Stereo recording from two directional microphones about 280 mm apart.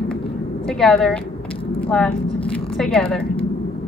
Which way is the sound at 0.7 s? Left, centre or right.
Centre.